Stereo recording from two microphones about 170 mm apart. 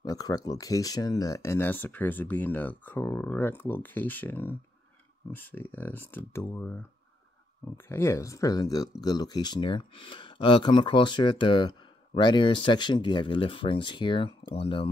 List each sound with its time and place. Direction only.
0.0 s speech: 20° left (ahead or behind)